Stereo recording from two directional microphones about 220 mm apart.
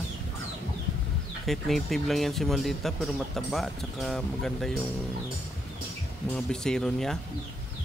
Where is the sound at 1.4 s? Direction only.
Centre (ahead or behind).